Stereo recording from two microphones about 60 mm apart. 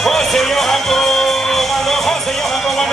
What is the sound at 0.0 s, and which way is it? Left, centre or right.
Music, centre.